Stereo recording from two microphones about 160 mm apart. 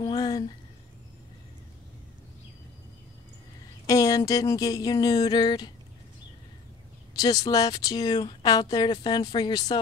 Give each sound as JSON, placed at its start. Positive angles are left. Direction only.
{"t": 0.0, "sound": "a sound", "side_deg": 25}
{"t": 3.8, "sound": "speech", "side_deg": 20}
{"t": 7.2, "sound": "speech", "side_deg": 25}